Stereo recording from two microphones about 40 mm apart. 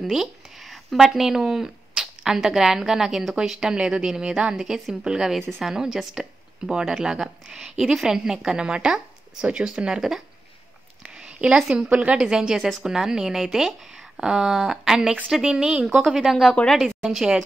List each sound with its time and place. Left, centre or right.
0.1 s a sound: centre
0.9 s speech: centre
11.0 s a sound: centre
11.9 s a woman's voice: right
12.2 s speech: centre
16.1 s speech: centre